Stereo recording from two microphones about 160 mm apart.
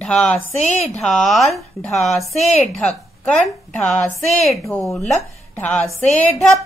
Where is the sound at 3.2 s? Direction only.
10° left (ahead or behind).